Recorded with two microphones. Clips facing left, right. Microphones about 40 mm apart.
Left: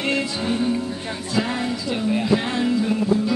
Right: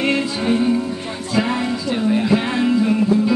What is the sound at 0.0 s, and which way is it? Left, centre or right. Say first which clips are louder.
Music: right 4 dB; right.